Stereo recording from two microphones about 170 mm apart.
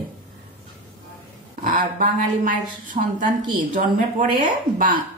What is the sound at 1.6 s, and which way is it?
Speech, 50° right (ahead or behind).